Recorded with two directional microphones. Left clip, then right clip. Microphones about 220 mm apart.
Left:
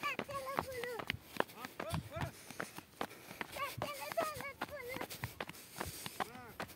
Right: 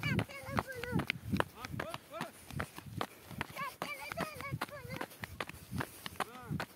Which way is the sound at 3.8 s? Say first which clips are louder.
Left 1 dB; 55° right (ahead or behind).